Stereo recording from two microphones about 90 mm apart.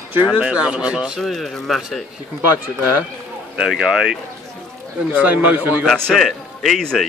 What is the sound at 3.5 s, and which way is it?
Speech, 5° right (ahead or behind).